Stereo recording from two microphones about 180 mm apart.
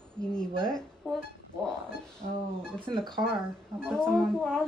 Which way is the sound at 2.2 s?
45° right (ahead or behind).